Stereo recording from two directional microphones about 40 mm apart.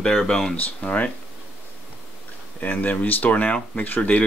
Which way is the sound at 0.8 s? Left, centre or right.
Left.